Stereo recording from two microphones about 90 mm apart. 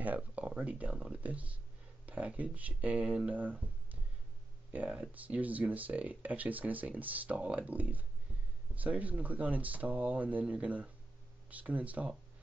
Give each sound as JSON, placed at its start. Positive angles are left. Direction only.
{"t": 0.0, "sound": "speech", "side_deg": -20}